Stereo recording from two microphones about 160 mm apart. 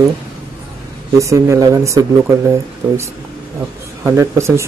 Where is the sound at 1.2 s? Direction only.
20° right (ahead or behind).